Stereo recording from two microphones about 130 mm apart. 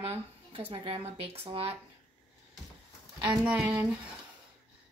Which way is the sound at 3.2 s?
5° right (ahead or behind).